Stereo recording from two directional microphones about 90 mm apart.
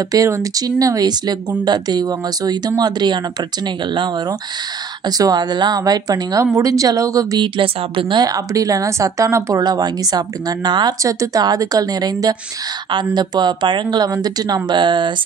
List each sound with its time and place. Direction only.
0.1 s a woman's voice: 40° right (ahead or behind); by 4.1 s 60° right (ahead or behind)
5.0 s a woman's voice: 45° right (ahead or behind)
7.3 s speech: 65° right (ahead or behind)
8.2 s a woman's voice: 40° right (ahead or behind)
11.0 s a woman's voice: 35° right (ahead or behind); by 15.1 s 60° right (ahead or behind)